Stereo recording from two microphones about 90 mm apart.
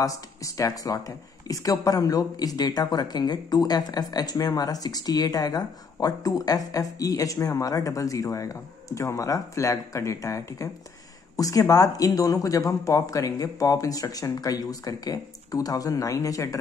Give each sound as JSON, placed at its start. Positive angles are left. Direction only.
{"t": 0.0, "sound": "speech", "side_deg": 40}